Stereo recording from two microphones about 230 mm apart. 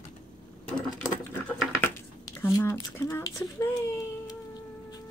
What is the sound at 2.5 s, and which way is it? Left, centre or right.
Speech, centre.